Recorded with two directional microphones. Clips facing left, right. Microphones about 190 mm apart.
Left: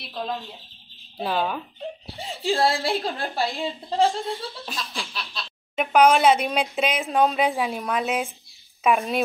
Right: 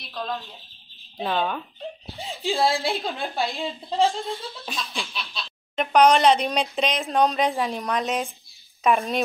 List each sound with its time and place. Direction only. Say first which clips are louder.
0.1 s speech: left 1 dB; 15° left (ahead or behind)
1.2 s a woman's voice: even; 5° left (ahead or behind)